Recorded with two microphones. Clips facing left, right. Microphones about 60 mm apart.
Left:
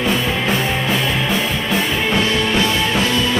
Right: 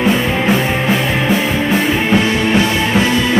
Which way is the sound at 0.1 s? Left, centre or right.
Right.